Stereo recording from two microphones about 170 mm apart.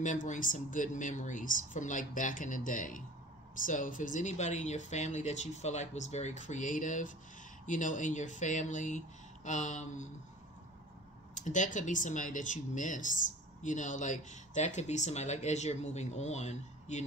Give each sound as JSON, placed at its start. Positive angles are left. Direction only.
{"t": 0.0, "sound": "speech", "side_deg": 45}
{"t": 11.3, "sound": "speech", "side_deg": 45}